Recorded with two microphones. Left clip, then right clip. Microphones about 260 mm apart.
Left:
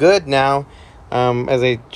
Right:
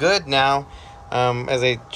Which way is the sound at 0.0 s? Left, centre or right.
Centre.